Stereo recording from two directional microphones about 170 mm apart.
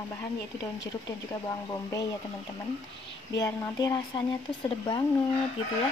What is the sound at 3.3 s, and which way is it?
Speech, 20° left (ahead or behind).